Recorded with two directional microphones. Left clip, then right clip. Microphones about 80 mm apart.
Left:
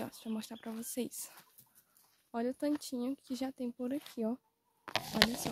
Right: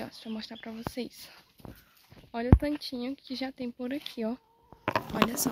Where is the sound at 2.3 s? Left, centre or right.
Left.